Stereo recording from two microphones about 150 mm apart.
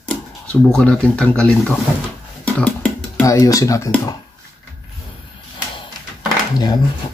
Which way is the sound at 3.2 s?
20° left (ahead or behind).